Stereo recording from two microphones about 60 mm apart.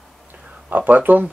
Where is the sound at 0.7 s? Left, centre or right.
Right.